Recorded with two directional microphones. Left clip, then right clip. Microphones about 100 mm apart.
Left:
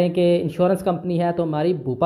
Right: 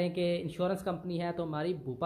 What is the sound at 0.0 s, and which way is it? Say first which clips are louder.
Speech: left 13 dB; 15° left (ahead or behind).